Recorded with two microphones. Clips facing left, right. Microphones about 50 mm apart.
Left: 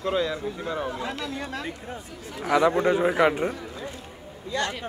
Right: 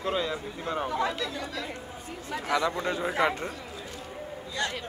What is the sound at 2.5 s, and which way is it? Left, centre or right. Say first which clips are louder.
A man's voice: left 7 dB; centre.